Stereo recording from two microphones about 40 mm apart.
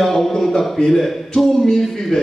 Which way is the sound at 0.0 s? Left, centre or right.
Centre.